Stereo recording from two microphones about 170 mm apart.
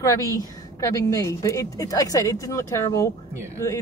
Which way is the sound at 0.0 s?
20° left (ahead or behind).